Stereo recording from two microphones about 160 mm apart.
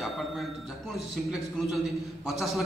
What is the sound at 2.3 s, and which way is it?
Speech, centre (ahead or behind).